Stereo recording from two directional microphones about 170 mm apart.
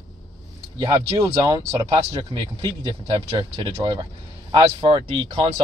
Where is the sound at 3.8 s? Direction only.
20° right (ahead or behind).